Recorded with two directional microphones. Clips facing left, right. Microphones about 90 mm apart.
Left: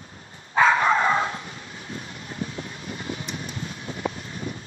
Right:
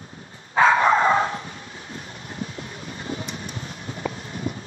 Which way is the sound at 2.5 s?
35° right (ahead or behind).